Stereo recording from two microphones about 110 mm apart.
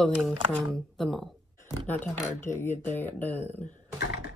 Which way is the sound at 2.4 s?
20° left (ahead or behind).